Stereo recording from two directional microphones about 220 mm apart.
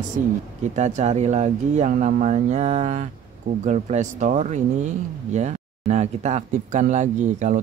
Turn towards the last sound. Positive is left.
turn(degrees=-35)  # may be behind; listen again after turning